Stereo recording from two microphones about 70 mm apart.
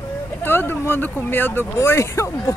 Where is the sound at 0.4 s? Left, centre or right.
Left.